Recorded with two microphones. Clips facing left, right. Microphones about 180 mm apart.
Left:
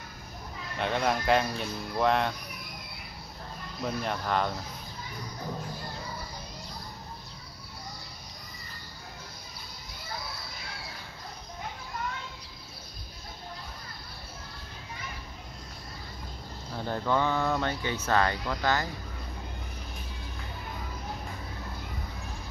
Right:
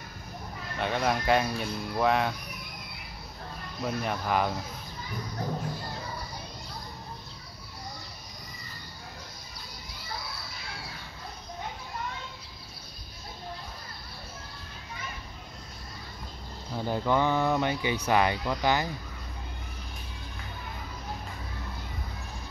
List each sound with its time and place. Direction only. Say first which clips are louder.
0.7 s speech: even; centre (ahead or behind)
3.8 s speech: right 1 dB; 5° right (ahead or behind)
16.7 s speech: right 2 dB; 10° right (ahead or behind)